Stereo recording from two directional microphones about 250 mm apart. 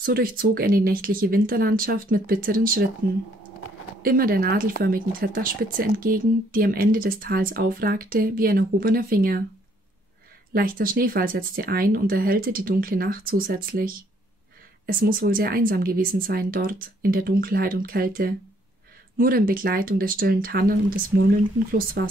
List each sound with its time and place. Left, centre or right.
0.0 s speech: right
4.0 s speech: right
10.5 s speech: right